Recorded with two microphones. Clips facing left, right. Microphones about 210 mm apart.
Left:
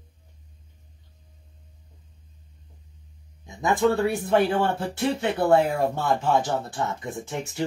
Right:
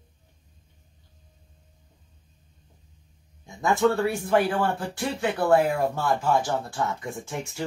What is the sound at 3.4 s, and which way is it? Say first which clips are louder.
Speech: even; 20° left (ahead or behind).